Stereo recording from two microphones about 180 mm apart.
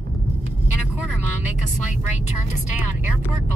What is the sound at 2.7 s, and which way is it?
Speech, 10° right (ahead or behind).